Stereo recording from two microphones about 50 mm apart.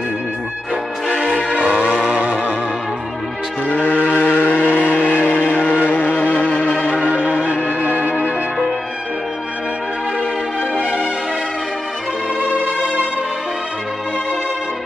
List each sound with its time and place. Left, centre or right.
1.5 s vehicle: right
2.0 s music: right
3.6 s vehicle: left
5.9 s music: left
7.1 s music: right